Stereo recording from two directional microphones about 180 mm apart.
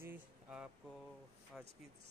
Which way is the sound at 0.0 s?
10° right (ahead or behind).